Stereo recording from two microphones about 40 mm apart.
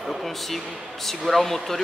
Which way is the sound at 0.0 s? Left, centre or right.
Centre.